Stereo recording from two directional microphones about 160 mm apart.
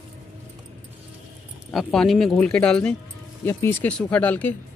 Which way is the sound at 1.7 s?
Centre (ahead or behind).